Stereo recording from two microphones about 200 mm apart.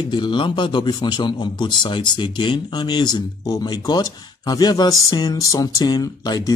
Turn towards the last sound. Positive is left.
turn(degrees=20)  # may be behind; listen again after turning